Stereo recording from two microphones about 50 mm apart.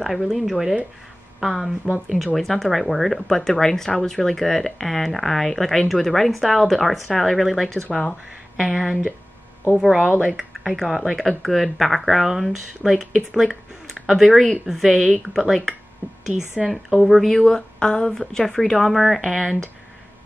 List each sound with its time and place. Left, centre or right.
0.0 s speech: centre
2.0 s a woman's voice: centre
2.3 s speech: centre
8.6 s a woman's voice: centre
9.8 s speech: centre
10.3 s a woman's voice: centre
17.3 s speech: centre